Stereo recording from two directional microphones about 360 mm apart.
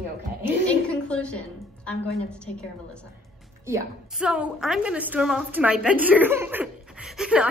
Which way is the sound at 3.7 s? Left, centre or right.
Centre.